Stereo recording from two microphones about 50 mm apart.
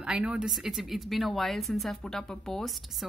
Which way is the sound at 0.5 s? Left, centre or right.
Centre.